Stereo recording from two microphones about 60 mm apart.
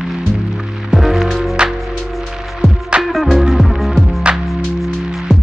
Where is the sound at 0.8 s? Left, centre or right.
Centre.